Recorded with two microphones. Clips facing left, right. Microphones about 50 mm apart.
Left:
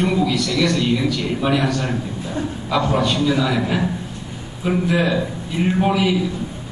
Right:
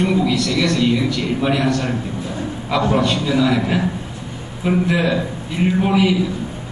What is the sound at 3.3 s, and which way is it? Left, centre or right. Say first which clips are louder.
A man's voice: right 2 dB; centre.